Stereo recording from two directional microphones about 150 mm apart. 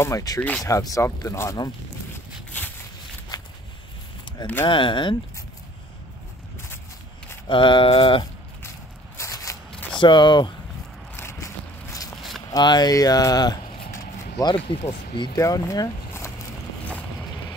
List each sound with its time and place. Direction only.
0.0 s speech: 25° left (ahead or behind)
0.4 s speech: 10° left (ahead or behind)
0.7 s speech: 20° left (ahead or behind)
4.6 s speech: 35° left (ahead or behind)
7.4 s speech: 35° left (ahead or behind)
8.6 s a sound: 20° left (ahead or behind)
9.7 s zipper: 10° left (ahead or behind)
9.9 s speech: 30° left (ahead or behind)
11.1 s a sound: 20° left (ahead or behind)
12.4 s speech: 25° left (ahead or behind)